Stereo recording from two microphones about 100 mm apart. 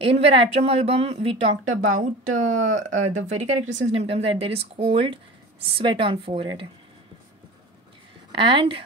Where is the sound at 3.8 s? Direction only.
90° right; by 6.7 s 60° right (ahead or behind).